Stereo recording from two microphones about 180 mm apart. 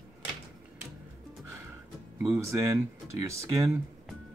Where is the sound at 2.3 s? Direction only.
15° right (ahead or behind).